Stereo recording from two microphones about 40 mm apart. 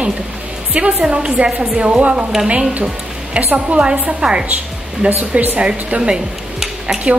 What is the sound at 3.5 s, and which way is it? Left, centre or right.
Speech, right.